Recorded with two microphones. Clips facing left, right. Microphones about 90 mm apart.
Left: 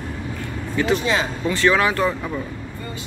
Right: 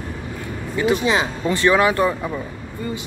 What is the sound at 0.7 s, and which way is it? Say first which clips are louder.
Speech: right 2 dB; 20° right (ahead or behind).